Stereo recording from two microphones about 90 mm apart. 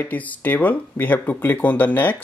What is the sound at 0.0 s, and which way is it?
Speech, 20° left (ahead or behind).